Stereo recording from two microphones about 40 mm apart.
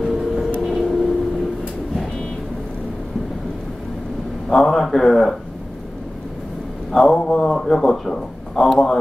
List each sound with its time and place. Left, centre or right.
0.0 s vehicle: centre
4.5 s speech: centre
6.9 s speech: centre